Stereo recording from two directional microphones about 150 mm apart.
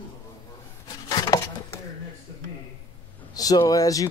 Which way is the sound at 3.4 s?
25° left (ahead or behind).